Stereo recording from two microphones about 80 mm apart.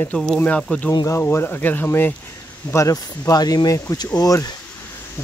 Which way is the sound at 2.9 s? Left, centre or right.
Left.